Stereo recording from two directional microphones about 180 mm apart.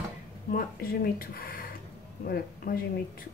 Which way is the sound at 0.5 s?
55° left (ahead or behind).